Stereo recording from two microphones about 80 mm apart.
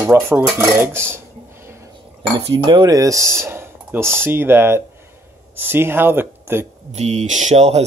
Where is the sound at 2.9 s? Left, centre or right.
Right.